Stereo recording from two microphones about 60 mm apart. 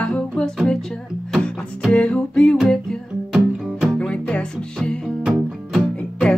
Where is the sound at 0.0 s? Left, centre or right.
Centre.